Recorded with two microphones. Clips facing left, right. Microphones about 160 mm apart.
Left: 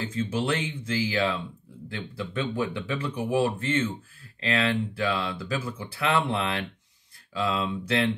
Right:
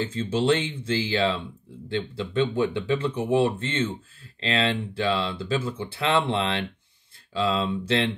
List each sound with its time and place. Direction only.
0.0 s speech: 25° right (ahead or behind)